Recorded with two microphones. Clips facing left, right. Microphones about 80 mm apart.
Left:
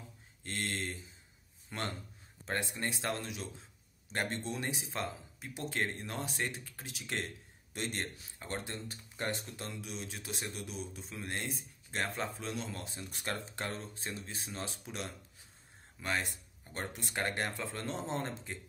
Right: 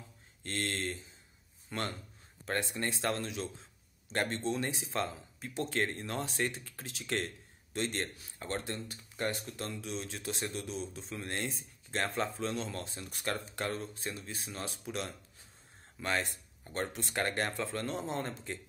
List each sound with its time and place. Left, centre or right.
0.4 s speech: centre
13.1 s speech: left
17.8 s speech: left